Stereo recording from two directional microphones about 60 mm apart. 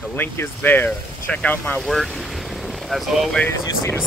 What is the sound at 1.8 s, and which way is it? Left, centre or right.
Boat, centre.